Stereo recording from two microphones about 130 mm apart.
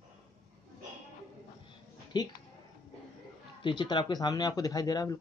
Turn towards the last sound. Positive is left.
turn(degrees=30)  # may be behind; listen again after turning